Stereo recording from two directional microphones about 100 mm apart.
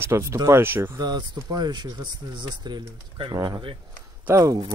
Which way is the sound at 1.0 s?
45° right (ahead or behind).